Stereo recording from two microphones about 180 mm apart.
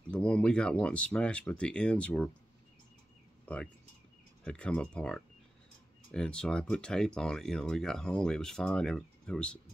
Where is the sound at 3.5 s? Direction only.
5° left (ahead or behind).